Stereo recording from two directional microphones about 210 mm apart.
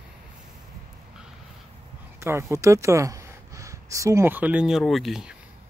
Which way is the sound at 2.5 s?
15° right (ahead or behind).